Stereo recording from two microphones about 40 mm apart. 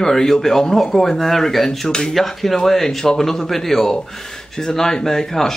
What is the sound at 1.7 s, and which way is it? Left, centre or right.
Speech, centre.